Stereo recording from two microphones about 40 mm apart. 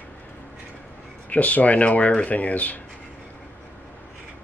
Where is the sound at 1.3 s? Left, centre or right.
Left.